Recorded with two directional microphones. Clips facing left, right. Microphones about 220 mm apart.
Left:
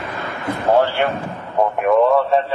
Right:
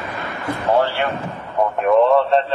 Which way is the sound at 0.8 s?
Centre (ahead or behind).